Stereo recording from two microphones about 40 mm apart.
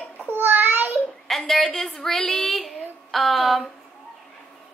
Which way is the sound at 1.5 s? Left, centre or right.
Centre.